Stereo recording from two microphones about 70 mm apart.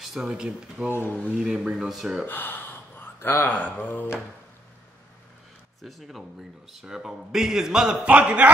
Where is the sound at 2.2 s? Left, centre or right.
Left.